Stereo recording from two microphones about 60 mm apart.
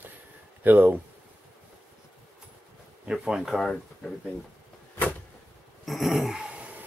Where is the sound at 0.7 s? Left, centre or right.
Right.